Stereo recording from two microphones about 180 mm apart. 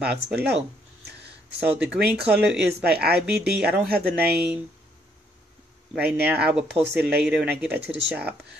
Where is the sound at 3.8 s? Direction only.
Centre (ahead or behind).